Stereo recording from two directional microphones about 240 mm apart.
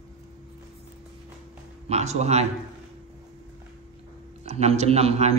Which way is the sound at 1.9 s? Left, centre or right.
Right.